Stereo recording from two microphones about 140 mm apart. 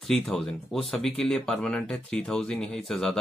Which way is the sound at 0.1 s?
5° left (ahead or behind).